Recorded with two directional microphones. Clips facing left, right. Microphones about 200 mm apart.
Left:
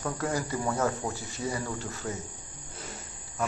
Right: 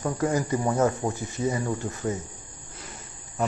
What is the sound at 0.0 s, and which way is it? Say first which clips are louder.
Speech: right 5 dB; 20° right (ahead or behind).